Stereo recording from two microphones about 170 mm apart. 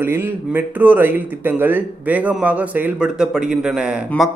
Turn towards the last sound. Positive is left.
turn(degrees=-5)  # may be behind; listen again after turning